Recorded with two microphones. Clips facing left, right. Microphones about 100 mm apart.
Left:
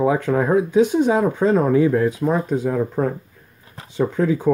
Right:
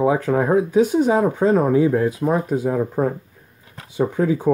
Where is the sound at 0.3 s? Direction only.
25° right (ahead or behind).